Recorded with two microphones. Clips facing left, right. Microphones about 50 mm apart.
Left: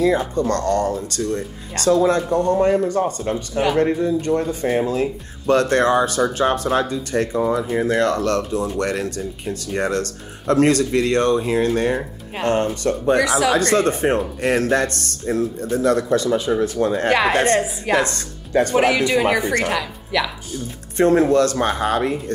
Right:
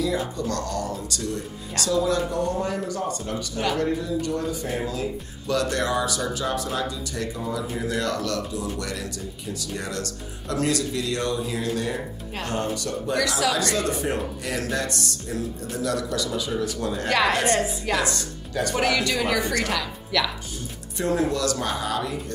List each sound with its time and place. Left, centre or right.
0.2 s speech: left
13.2 s speech: left
13.5 s speech: left
17.1 s speech: left
17.9 s speech: left
18.8 s a woman's voice: left
21.0 s speech: left